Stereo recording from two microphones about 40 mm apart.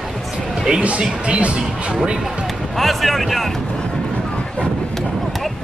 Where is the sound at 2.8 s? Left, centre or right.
Centre.